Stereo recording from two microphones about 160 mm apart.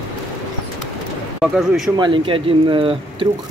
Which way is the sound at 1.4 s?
5° right (ahead or behind).